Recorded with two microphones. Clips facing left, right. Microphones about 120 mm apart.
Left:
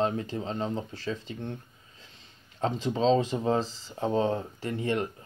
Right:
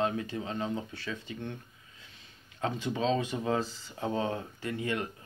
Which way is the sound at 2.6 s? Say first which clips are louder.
Left 4 dB; 30° left (ahead or behind).